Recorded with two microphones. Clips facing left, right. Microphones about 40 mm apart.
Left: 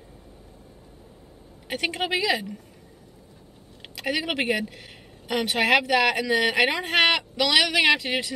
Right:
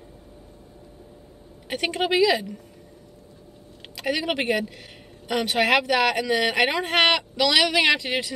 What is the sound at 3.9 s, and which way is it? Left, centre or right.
Speech, centre.